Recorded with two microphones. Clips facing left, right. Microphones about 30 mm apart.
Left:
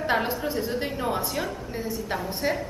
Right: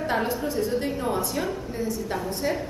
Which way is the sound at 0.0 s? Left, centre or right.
Left.